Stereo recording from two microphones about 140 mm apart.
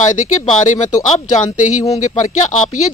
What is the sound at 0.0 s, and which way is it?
Speech, 60° left (ahead or behind).